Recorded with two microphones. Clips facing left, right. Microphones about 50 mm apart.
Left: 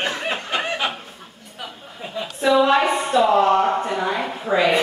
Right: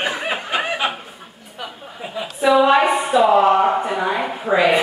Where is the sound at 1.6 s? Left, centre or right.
Centre.